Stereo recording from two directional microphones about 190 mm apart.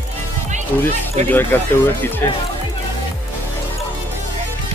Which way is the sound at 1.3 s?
10° left (ahead or behind).